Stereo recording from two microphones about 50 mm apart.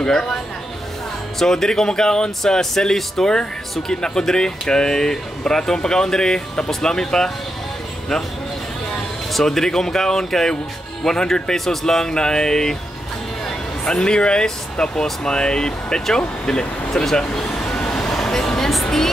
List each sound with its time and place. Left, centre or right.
0.0 s speech: centre
1.4 s speech: centre
9.3 s speech: centre